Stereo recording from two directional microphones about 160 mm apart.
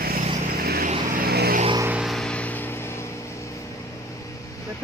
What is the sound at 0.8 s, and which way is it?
Vehicle, 65° right (ahead or behind).